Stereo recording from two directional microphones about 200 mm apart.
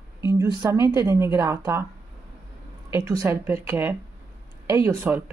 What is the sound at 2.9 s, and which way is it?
A woman's voice, 15° right (ahead or behind).